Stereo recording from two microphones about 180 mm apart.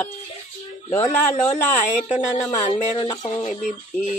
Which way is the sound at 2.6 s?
40° left (ahead or behind).